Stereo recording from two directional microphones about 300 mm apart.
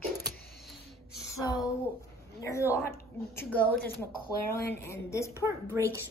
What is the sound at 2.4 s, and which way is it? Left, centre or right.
A woman's voice, centre.